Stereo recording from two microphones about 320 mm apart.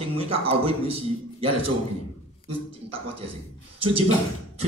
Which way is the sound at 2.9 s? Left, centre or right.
Centre.